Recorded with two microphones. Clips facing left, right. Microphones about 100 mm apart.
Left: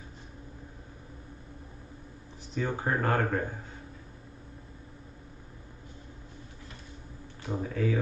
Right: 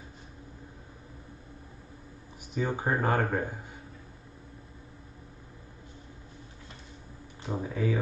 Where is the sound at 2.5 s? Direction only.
15° right (ahead or behind).